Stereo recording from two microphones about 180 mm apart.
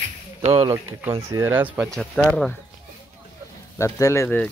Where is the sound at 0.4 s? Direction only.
30° right (ahead or behind).